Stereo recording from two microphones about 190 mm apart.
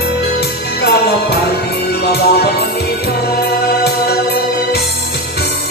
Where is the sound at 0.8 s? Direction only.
60° left (ahead or behind).